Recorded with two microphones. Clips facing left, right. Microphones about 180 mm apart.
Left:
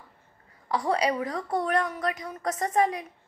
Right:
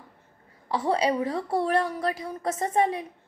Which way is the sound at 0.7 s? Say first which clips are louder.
Right 1 dB; 25° right (ahead or behind).